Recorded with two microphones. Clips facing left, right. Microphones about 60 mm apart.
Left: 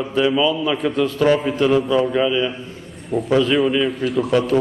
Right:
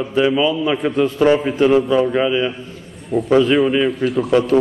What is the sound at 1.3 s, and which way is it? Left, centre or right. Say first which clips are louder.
A man's voice: right 3 dB; centre.